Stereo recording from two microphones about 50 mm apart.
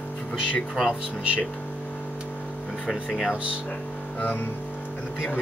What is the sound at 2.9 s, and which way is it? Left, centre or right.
Speech, centre.